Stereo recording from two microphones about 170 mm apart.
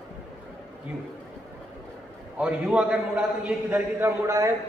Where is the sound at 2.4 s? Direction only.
5° right (ahead or behind).